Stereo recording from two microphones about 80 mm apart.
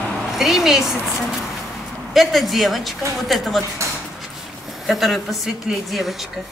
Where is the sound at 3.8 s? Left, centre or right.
Right.